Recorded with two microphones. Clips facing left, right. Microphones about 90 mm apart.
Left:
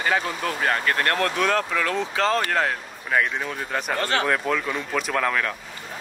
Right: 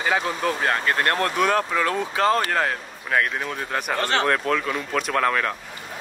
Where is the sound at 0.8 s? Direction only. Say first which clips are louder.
Right 1 dB; 25° right (ahead or behind); by 3.9 s centre (ahead or behind).